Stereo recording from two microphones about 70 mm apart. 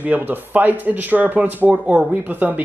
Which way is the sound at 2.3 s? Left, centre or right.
Right.